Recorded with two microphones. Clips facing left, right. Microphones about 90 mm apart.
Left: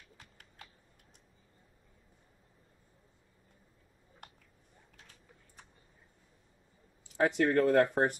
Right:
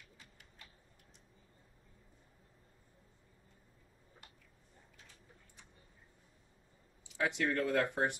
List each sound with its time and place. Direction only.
0.2 s typing: 50° left (ahead or behind)
7.2 s speech: 40° left (ahead or behind)